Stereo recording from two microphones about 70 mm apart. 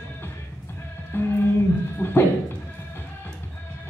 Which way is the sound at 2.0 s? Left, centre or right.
Centre.